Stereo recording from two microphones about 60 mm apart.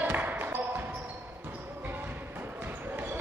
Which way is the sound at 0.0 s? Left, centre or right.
Right.